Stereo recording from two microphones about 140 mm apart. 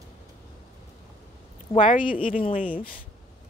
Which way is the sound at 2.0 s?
40° left (ahead or behind).